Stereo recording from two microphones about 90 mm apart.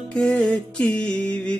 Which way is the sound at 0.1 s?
10° left (ahead or behind).